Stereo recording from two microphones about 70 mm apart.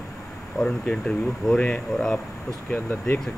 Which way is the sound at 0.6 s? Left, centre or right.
Centre.